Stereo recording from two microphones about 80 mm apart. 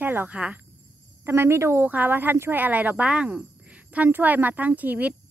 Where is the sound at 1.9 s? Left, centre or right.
Right.